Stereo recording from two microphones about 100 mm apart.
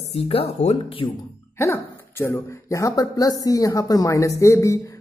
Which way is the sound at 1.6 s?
25° left (ahead or behind).